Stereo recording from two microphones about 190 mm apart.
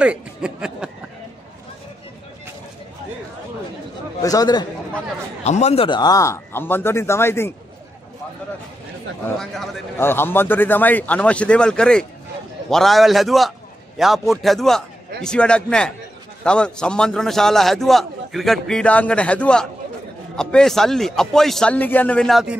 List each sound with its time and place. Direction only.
0.0 s a sound: 5° right (ahead or behind)
4.2 s speech: 20° left (ahead or behind)
5.4 s a man's voice: 35° left (ahead or behind); by 7.5 s 10° left (ahead or behind)
9.2 s a man's voice: centre (ahead or behind)